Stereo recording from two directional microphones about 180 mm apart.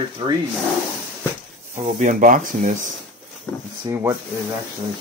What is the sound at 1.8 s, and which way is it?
Speech, 40° right (ahead or behind).